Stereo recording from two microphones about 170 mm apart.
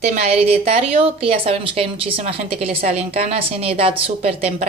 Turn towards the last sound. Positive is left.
turn(degrees=-35)  # may be behind; listen again after turning